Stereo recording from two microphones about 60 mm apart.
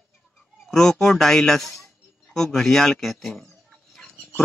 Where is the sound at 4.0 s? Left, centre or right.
Centre.